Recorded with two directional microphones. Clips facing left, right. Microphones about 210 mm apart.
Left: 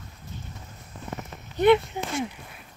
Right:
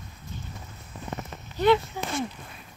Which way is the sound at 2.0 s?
20° left (ahead or behind).